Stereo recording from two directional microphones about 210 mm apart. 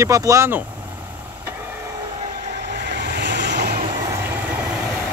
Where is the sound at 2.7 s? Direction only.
55° right (ahead or behind).